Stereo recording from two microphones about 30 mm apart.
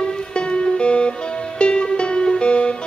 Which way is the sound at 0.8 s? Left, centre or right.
Left.